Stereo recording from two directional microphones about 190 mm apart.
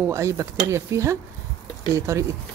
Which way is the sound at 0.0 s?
15° right (ahead or behind).